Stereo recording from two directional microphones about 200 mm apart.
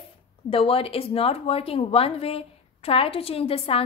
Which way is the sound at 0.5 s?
30° left (ahead or behind).